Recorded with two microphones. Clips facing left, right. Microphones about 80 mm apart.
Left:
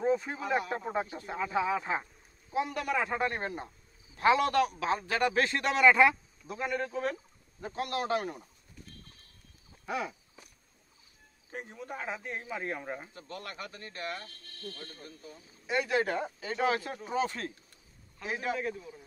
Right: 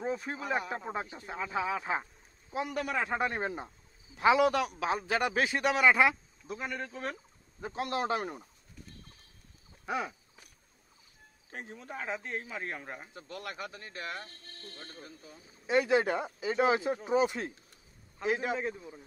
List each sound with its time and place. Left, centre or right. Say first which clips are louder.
0.0 s speech: left 5 dB; centre
3.2 s a man's voice: even; centre
7.6 s a man's voice: right 1 dB; centre
9.8 s a sound: even; centre
11.5 s speech: left 1 dB; centre
14.6 s a man's voice: left 4 dB; right